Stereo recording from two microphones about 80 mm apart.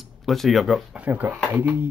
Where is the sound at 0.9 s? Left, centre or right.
Centre.